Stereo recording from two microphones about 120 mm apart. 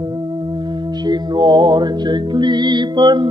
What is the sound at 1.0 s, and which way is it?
Music, 40° right (ahead or behind).